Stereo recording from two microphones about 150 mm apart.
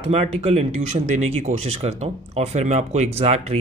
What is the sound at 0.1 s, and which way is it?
Speech, 45° right (ahead or behind).